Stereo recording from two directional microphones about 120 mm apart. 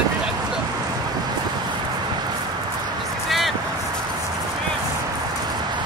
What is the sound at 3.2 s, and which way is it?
Vehicle, centre (ahead or behind).